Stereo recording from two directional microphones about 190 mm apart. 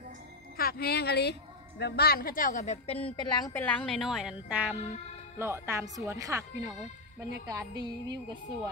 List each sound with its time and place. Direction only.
0.6 s a woman's voice: 50° left (ahead or behind); by 3.3 s 30° left (ahead or behind)
3.3 s a woman's voice: 15° left (ahead or behind); by 6.7 s 15° right (ahead or behind)
7.4 s music: 20° right (ahead or behind)